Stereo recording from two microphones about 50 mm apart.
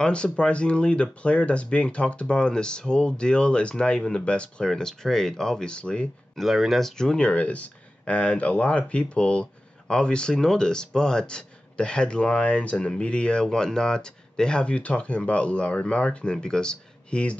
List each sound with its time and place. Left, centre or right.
0.0 s speech: centre
4.6 s speech: centre
6.3 s speech: centre
7.2 s speech: left